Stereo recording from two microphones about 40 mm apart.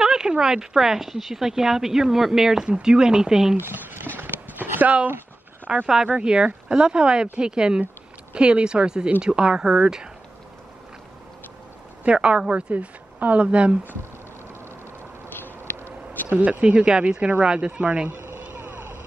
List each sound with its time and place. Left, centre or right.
0.0 s speech: centre
2.6 s speech: centre
3.5 s speech: right
4.2 s a sound: right
5.7 s speech: right
12.0 s speech: right
12.7 s speech: right
15.2 s a sound: left
16.3 s speech: right
16.6 s speech: right
18.1 s vehicle: right
18.6 s vehicle: right